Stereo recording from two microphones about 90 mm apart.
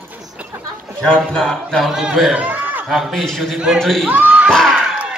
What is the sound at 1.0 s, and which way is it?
A man's voice, 10° left (ahead or behind).